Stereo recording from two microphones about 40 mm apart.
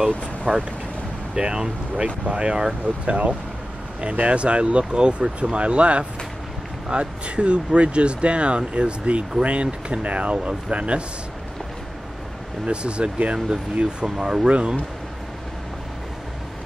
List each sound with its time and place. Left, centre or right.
0.5 s speech: right
12.6 s speech: right
14.0 s speech: centre